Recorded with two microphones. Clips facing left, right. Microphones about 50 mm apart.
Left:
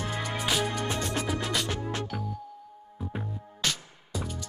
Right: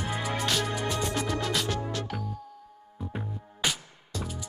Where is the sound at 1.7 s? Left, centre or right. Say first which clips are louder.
Even; left.